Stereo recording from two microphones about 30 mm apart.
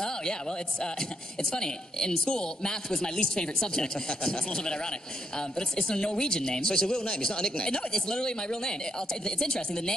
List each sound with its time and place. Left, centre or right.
0.0 s speech: left